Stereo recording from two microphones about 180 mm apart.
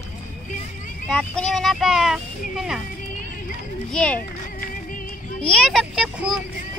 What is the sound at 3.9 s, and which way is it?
Speech, 5° left (ahead or behind).